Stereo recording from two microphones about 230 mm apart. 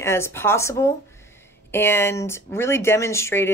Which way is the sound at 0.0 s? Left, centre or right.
Centre.